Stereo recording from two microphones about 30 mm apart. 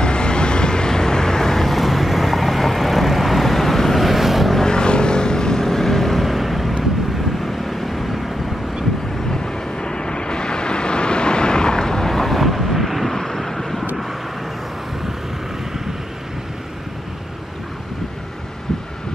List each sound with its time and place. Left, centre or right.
0.0 s vehicle: left
1.7 s vehicle: centre
4.0 s vehicle: centre
4.6 s vehicle: left; by 6.2 s centre
6.2 s vehicle: centre
9.8 s vehicle: left
12.1 s vehicle: centre
13.1 s vehicle: centre